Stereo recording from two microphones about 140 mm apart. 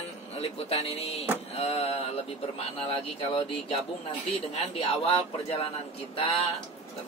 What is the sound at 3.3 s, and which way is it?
Speech, 40° left (ahead or behind).